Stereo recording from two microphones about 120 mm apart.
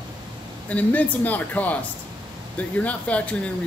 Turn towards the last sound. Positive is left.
turn(degrees=10)  # may be behind; listen again after turning